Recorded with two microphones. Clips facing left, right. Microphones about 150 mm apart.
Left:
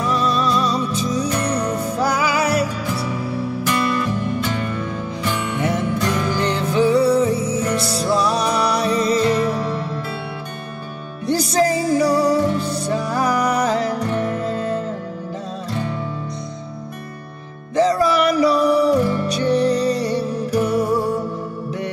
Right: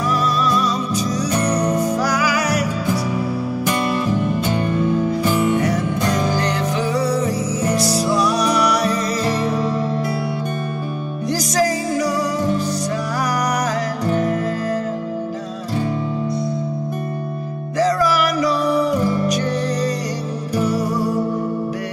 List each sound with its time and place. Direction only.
0.1 s music: 25° left (ahead or behind)
5.6 s music: 25° left (ahead or behind)
6.9 s music: 25° left (ahead or behind)
11.2 s music: 30° left (ahead or behind)
17.7 s music: 25° left (ahead or behind)